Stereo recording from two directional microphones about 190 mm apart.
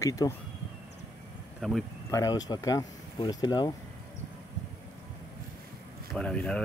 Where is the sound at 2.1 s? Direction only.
20° left (ahead or behind).